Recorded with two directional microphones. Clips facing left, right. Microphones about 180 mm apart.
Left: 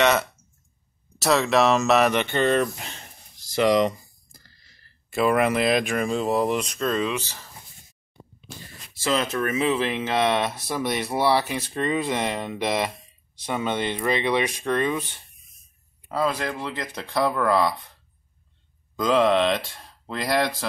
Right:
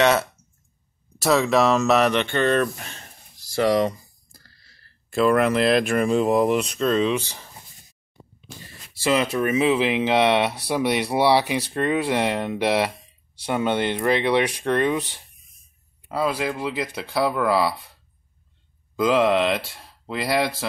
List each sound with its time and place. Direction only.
0.0 s speech: 5° right (ahead or behind)
1.3 s speech: 5° right (ahead or behind); by 3.1 s 20° left (ahead or behind)
3.5 s a sound: 20° left (ahead or behind)
5.1 s speech: 5° left (ahead or behind)
7.2 s speech: 15° right (ahead or behind)
9.0 s speech: 15° right (ahead or behind)
18.9 s speech: 5° right (ahead or behind)